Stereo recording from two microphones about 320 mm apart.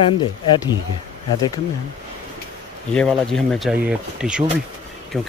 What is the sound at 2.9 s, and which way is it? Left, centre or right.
Speech, centre.